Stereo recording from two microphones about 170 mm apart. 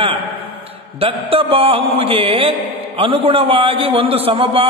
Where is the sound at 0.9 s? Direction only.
35° right (ahead or behind).